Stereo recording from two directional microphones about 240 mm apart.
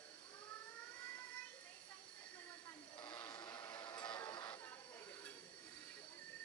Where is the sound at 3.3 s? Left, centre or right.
Centre.